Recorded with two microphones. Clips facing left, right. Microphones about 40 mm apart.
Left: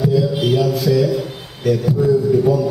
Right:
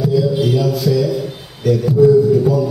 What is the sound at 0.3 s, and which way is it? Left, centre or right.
Music, left.